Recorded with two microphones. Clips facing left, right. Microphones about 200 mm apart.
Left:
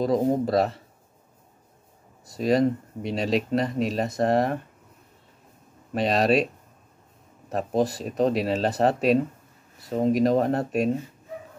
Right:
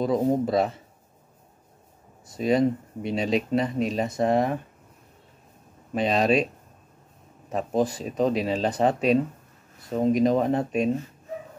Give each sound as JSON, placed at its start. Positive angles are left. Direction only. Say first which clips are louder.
{"t": 0.0, "sound": "speech", "louder": "even", "side_deg": 0}
{"t": 2.3, "sound": "speech", "louder": "even", "side_deg": 0}
{"t": 5.9, "sound": "speech", "louder": "even", "side_deg": 0}
{"t": 9.8, "sound": "speech", "louder": "even", "side_deg": 0}